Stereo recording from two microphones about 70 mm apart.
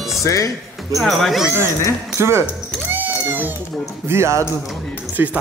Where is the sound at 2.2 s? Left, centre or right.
Right.